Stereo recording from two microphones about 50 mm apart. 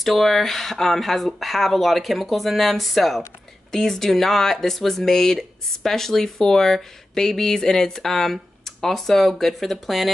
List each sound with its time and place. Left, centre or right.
0.0 s speech: centre